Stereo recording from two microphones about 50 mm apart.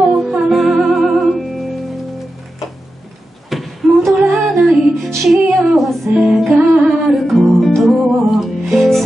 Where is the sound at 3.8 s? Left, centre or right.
Centre.